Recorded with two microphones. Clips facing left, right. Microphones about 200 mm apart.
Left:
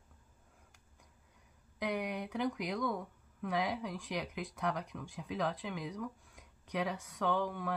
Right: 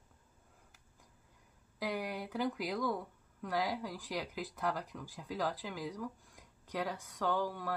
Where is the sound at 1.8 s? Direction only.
Centre (ahead or behind).